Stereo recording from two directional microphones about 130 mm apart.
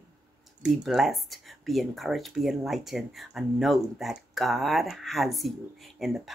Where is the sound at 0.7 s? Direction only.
Centre (ahead or behind).